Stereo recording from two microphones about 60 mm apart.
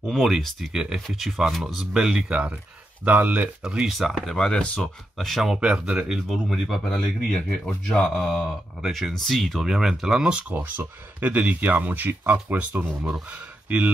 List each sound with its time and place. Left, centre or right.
0.1 s speech: centre
3.1 s speech: right
3.6 s speech: centre
4.0 s speech: centre
5.3 s speech: centre
5.6 s speech: centre
6.3 s speech: centre
8.3 s speech: centre
11.1 s speech: right